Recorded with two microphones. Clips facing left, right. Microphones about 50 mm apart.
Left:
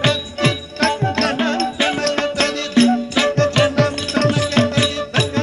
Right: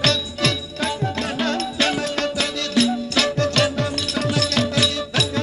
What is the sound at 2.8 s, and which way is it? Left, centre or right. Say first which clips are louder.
Music: left 5 dB; left.